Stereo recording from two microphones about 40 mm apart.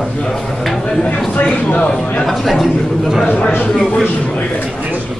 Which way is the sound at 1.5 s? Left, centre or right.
Left.